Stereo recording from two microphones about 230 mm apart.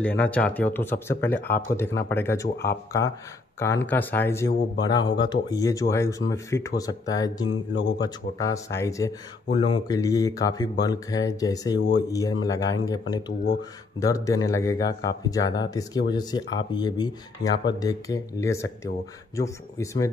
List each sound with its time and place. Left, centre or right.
0.0 s speech: centre
7.4 s speech: left
8.0 s speech: centre